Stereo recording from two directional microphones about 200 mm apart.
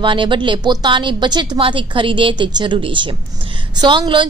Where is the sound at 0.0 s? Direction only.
25° right (ahead or behind).